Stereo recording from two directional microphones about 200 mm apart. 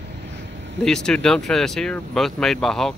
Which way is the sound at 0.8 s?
5° left (ahead or behind).